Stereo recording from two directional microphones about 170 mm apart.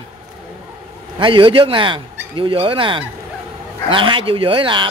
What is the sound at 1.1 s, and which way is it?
Speech, 30° right (ahead or behind).